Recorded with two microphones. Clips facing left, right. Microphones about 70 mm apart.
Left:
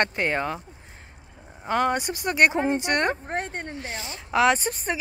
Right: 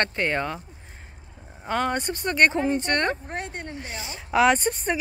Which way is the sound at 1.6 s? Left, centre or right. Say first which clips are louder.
Left 2 dB; centre.